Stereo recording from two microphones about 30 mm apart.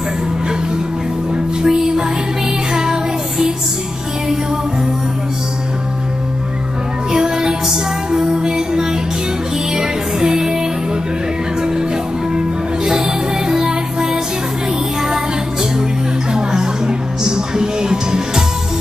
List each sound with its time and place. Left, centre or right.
1.6 s music: right
7.1 s music: right
12.4 s music: right
16.3 s music: right